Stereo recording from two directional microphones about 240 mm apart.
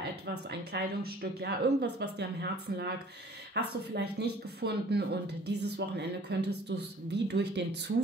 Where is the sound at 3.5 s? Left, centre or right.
Right.